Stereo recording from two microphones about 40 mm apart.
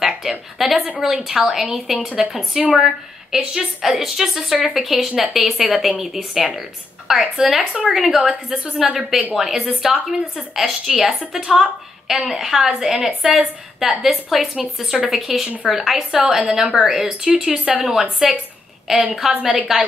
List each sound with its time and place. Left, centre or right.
0.0 s a sound: centre
1.0 s a woman's voice: centre
7.1 s a woman's voice: centre
7.9 s a woman's voice: centre
17.3 s speech: right
17.8 s a woman's voice: centre